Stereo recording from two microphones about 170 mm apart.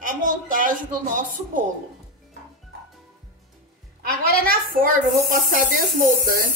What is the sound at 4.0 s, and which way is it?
Speech, 60° right (ahead or behind).